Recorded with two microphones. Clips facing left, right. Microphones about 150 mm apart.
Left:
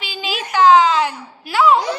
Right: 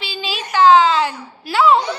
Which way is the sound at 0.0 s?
15° left (ahead or behind).